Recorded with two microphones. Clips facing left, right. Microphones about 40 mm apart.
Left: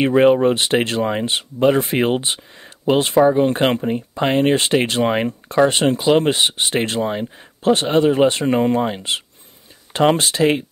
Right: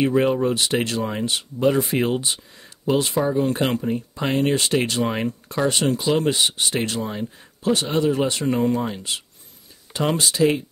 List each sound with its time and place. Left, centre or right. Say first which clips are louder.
0.0 s speech: left 6 dB; left